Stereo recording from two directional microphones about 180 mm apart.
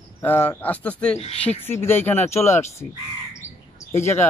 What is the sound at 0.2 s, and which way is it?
Speech, 10° left (ahead or behind).